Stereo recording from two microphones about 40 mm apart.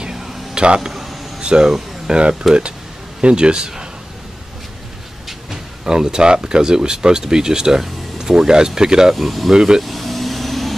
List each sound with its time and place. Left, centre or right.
0.0 s a sound: centre
1.4 s speech: centre
2.4 s speech: centre
3.2 s speech: right
5.9 s speech: right
9.1 s speech: centre
9.8 s vehicle: centre